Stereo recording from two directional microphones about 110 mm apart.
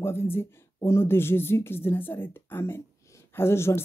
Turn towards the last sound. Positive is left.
turn(degrees=25)  # may be behind; listen again after turning